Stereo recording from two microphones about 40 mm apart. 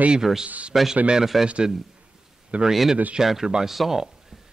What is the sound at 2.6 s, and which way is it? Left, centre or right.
Speech, centre.